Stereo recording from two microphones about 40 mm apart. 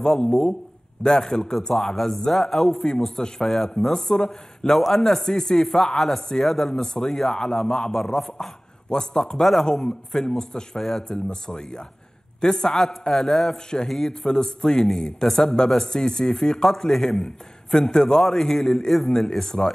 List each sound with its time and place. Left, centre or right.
0.0 s a man's voice: centre
5.9 s a man's voice: centre
8.9 s a man's voice: centre
9.4 s a man's voice: centre